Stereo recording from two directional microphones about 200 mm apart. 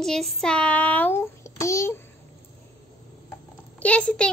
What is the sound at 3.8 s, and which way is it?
Child singing, 5° left (ahead or behind).